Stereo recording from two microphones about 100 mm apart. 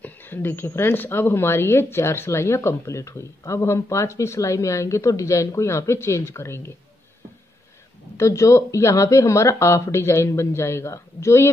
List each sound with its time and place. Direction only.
0.0 s speech: 20° left (ahead or behind)
8.2 s speech: 30° left (ahead or behind)